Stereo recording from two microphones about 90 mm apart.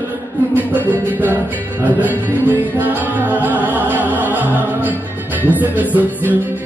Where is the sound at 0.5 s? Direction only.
20° right (ahead or behind).